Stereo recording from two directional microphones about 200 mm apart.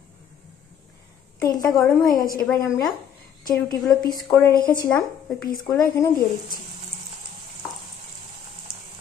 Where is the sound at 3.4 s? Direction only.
20° left (ahead or behind).